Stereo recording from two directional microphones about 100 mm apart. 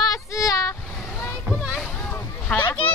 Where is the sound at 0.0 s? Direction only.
35° left (ahead or behind).